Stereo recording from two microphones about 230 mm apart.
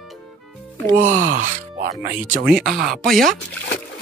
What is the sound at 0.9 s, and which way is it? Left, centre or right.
Speech, right.